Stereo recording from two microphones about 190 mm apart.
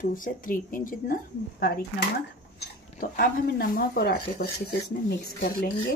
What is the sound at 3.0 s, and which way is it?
Speech, 50° left (ahead or behind).